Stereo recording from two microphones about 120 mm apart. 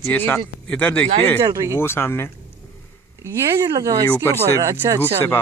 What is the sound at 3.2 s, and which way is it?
Speech, 25° right (ahead or behind).